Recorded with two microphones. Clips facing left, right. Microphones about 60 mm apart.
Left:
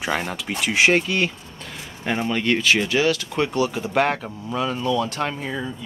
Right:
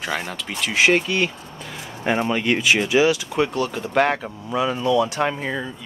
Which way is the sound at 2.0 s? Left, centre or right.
Centre.